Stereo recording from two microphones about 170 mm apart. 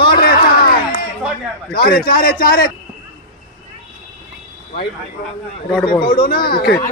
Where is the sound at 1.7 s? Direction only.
60° left (ahead or behind).